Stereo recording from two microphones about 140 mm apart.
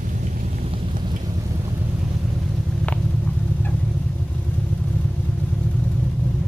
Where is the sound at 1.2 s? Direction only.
25° right (ahead or behind).